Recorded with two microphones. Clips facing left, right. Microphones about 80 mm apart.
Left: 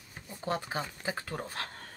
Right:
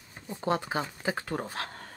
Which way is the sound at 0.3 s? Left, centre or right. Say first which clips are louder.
Right 5 dB; right.